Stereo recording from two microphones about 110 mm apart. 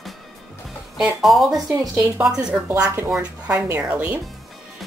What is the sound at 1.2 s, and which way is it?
A woman's voice, centre (ahead or behind).